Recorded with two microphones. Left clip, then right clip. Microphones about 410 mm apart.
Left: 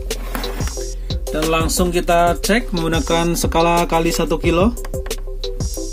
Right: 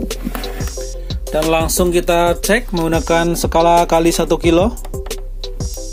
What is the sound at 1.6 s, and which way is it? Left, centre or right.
Music, right.